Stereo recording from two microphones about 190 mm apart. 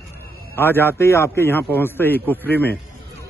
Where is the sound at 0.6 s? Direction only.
10° left (ahead or behind).